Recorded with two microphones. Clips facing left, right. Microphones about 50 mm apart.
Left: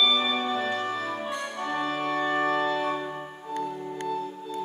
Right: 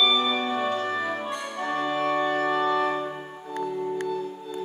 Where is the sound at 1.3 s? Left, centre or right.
Centre.